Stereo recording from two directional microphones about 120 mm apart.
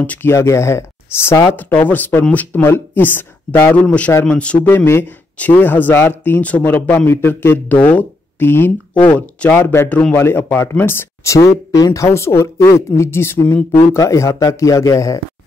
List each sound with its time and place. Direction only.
0.0 s speech: 15° left (ahead or behind)
1.9 s speech: 15° left (ahead or behind)